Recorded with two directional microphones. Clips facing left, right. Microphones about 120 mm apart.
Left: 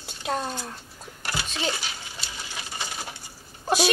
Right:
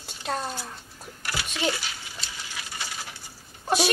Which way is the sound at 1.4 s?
25° left (ahead or behind).